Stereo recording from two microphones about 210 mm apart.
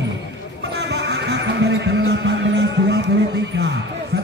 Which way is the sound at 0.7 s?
55° right (ahead or behind).